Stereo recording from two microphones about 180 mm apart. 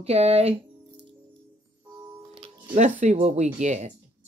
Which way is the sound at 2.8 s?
40° right (ahead or behind).